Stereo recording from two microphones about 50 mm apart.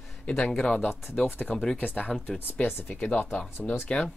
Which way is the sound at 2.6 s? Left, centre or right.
Left.